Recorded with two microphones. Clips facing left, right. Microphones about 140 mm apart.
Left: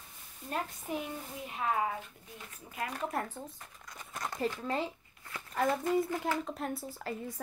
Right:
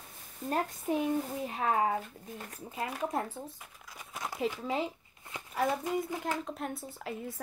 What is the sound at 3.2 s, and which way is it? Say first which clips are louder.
Speech: right 2 dB; 5° right (ahead or behind).